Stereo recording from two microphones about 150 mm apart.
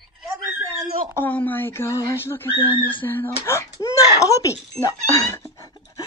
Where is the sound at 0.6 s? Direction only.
15° left (ahead or behind).